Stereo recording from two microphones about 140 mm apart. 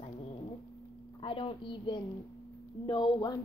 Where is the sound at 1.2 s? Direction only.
40° left (ahead or behind).